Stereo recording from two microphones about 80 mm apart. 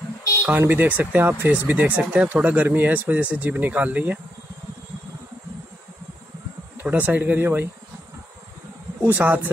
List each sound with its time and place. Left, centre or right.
0.5 s speech: right
6.8 s speech: right
9.0 s speech: right